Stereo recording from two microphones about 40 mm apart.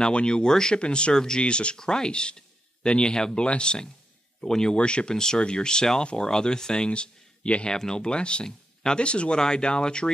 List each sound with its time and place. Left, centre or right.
0.1 s speech: left
4.7 s speech: left
5.1 s speech: centre
7.7 s speech: centre